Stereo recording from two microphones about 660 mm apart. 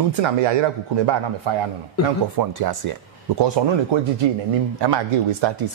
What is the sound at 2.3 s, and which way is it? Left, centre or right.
Speech, right.